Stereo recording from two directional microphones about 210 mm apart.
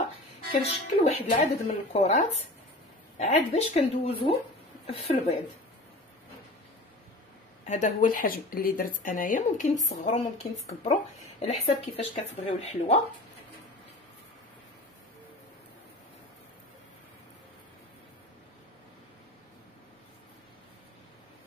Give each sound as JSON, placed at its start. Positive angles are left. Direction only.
{"t": 0.5, "sound": "speech", "side_deg": 30}
{"t": 7.6, "sound": "speech", "side_deg": 35}
{"t": 11.4, "sound": "speech", "side_deg": 30}